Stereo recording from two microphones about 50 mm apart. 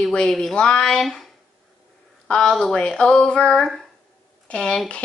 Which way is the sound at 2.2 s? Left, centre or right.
Centre.